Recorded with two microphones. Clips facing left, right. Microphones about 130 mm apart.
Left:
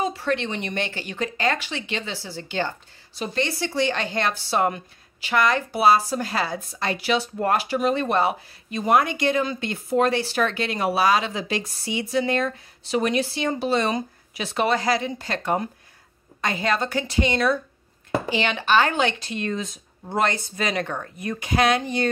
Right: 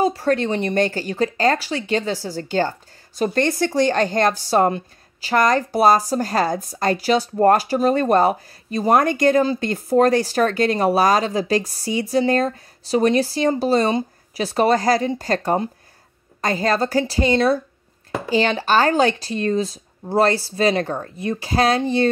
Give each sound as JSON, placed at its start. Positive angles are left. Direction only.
{"t": 0.0, "sound": "speech", "side_deg": -40}